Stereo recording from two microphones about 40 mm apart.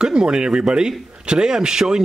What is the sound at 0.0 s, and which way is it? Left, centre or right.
Speech, right.